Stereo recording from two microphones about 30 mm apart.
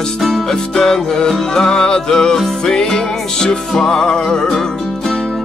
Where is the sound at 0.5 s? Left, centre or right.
Centre.